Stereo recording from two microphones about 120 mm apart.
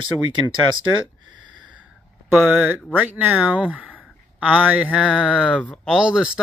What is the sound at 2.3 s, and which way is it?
Speech, 10° right (ahead or behind).